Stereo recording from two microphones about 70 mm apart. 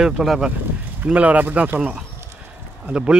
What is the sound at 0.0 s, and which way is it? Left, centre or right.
Speech, centre.